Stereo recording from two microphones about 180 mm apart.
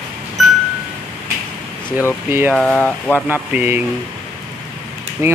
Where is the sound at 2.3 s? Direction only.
10° right (ahead or behind).